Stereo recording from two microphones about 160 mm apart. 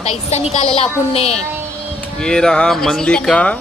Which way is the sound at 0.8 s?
40° left (ahead or behind).